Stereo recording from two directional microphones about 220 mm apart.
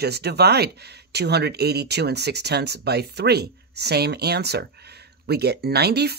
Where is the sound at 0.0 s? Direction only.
50° right (ahead or behind).